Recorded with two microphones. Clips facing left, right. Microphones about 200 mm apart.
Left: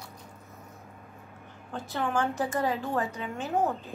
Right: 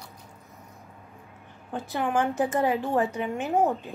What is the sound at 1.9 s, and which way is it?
A woman's voice, 15° right (ahead or behind).